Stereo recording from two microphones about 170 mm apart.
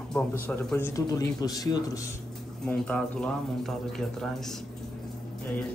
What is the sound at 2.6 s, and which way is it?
A man's voice, 5° left (ahead or behind).